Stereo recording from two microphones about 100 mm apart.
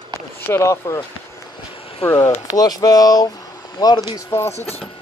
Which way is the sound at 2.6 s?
40° left (ahead or behind).